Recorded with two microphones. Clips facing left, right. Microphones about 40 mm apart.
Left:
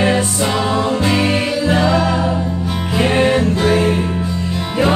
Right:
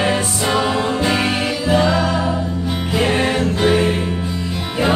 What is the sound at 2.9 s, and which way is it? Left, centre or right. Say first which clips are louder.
Music: left 3 dB; centre.